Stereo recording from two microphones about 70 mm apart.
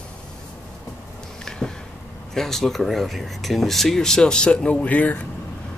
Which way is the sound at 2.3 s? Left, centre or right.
Centre.